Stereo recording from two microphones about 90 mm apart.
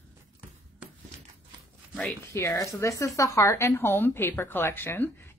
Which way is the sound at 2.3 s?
35° left (ahead or behind).